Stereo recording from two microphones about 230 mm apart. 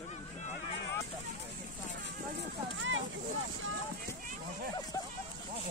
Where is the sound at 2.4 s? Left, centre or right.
Right.